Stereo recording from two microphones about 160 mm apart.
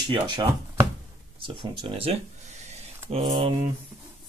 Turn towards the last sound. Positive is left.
turn(degrees=-35)  # may be behind; listen again after turning